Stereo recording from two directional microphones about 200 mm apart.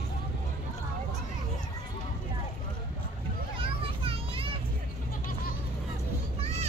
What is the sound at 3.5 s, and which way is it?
Children playing, 25° right (ahead or behind).